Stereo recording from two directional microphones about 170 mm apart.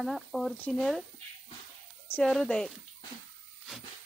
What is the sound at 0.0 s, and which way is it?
Speech, centre (ahead or behind).